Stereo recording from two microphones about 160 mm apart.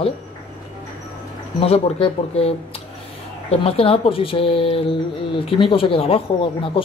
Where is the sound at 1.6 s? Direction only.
35° left (ahead or behind).